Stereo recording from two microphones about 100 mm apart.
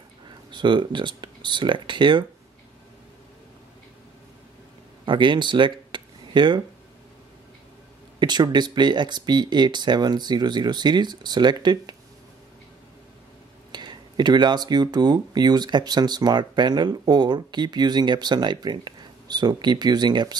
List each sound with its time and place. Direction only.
0.5 s speech: 50° right (ahead or behind)
5.0 s speech: 55° right (ahead or behind)
8.2 s speech: 45° right (ahead or behind)
13.7 s speech: 45° right (ahead or behind)